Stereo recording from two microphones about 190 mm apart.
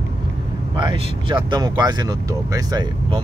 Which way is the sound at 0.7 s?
25° right (ahead or behind).